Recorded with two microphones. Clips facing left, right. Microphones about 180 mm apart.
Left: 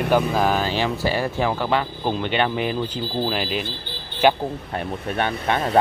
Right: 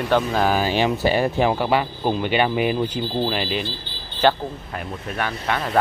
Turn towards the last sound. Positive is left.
turn(degrees=25)  # may be behind; listen again after turning